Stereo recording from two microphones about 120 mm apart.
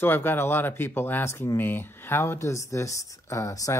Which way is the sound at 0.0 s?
20° left (ahead or behind).